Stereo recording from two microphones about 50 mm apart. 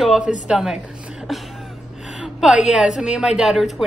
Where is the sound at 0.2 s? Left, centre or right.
Right.